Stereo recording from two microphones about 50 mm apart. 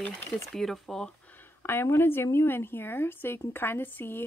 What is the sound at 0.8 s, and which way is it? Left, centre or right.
Speech, centre.